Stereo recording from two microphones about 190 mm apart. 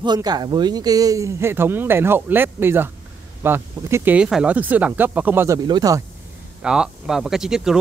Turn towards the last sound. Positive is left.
turn(degrees=-5)  # may be behind; listen again after turning